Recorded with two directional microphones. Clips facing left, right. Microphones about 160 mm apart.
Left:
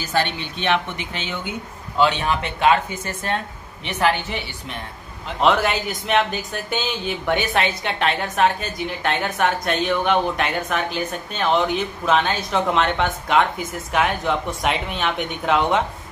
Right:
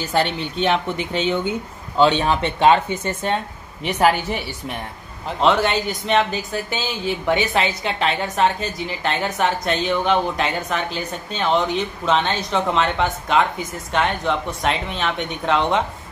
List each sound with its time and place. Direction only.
0.4 s speech: 30° right (ahead or behind)
5.4 s speech: centre (ahead or behind)